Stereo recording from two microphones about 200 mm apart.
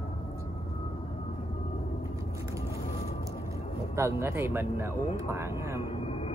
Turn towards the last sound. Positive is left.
turn(degrees=30)  # may be behind; listen again after turning